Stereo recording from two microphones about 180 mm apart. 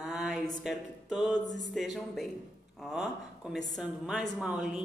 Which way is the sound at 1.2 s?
20° left (ahead or behind).